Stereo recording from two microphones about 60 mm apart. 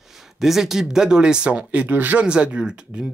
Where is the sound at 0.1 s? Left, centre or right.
Centre.